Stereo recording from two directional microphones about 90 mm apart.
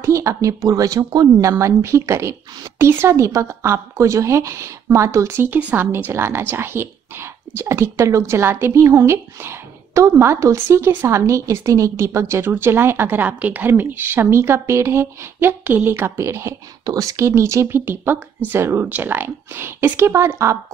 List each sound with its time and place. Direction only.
0.0 s a woman's voice: 35° right (ahead or behind)
16.8 s a woman's voice: 40° right (ahead or behind)